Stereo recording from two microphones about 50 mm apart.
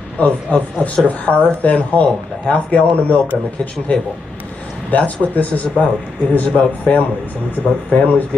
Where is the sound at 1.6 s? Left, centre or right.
Left.